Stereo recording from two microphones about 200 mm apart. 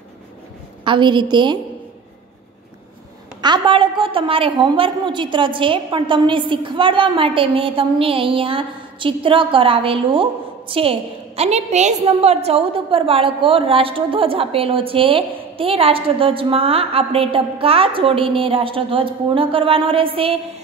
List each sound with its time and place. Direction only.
0.8 s a woman's voice: 25° right (ahead or behind)
3.3 s a woman's voice: 20° right (ahead or behind)